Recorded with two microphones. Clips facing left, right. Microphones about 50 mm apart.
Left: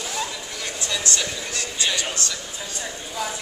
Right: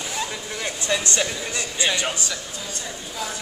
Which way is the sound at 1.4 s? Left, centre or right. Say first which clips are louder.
Right 2 dB; right.